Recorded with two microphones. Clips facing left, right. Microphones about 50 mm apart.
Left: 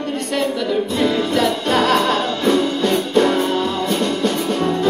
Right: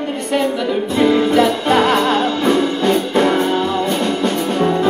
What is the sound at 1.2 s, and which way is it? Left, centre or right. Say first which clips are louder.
Music: right 4 dB; centre.